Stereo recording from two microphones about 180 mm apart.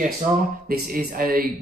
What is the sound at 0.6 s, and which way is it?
Speech, 60° right (ahead or behind).